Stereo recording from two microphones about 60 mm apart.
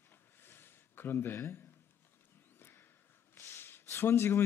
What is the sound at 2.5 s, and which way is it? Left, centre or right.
Horse, left.